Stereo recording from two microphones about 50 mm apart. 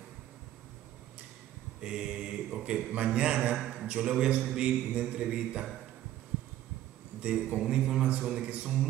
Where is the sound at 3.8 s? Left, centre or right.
Right.